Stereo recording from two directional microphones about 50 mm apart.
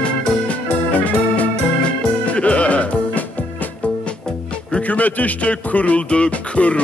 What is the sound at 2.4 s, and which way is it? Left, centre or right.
Music, left.